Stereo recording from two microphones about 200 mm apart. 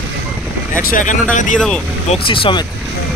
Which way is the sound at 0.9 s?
40° left (ahead or behind).